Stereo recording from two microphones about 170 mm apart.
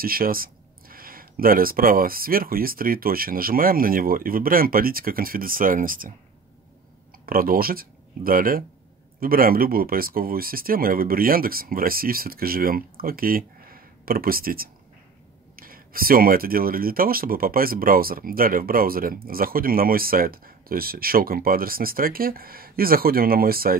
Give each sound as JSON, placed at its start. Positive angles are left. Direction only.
{"t": 0.0, "sound": "speech", "side_deg": -60}
{"t": 7.2, "sound": "speech", "side_deg": -60}